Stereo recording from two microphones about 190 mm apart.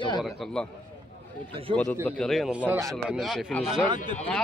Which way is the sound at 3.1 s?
Centre (ahead or behind).